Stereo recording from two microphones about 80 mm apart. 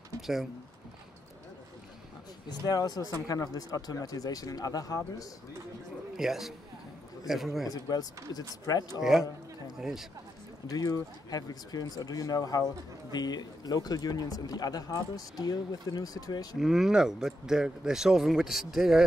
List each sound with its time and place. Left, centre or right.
2.6 s speech: left
6.1 s speech: centre
7.7 s speech: left
9.8 s speech: centre
10.7 s speech: left
16.5 s speech: centre